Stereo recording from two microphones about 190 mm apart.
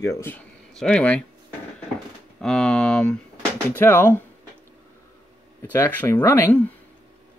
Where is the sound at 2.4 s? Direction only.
5° left (ahead or behind).